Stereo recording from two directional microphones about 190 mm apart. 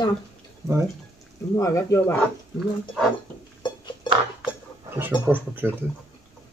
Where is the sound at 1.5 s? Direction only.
15° left (ahead or behind).